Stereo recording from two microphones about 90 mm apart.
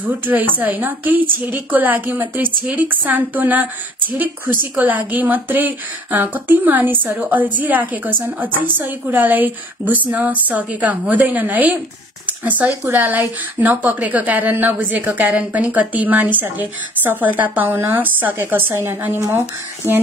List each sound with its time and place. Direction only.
0.0 s speech: 20° right (ahead or behind)
4.7 s speech: 20° right (ahead or behind)